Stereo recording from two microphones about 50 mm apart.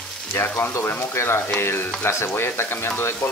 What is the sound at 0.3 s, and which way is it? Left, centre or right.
Speech, left.